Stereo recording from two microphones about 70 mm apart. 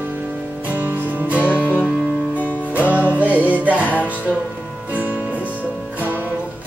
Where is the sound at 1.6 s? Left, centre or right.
Centre.